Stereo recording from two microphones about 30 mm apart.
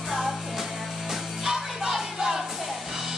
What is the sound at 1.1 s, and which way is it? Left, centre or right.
Music, centre.